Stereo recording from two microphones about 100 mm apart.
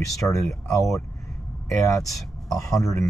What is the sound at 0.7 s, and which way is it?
Speech, 5° left (ahead or behind).